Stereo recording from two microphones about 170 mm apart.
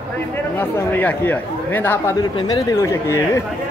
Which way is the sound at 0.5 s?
10° left (ahead or behind).